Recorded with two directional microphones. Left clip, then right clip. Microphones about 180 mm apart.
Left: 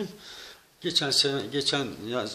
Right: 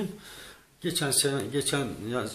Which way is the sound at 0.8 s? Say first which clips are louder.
Left 4 dB; 30° left (ahead or behind).